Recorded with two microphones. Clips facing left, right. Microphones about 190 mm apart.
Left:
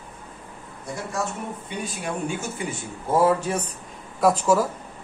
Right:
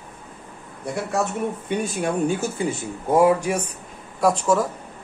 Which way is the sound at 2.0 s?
40° right (ahead or behind).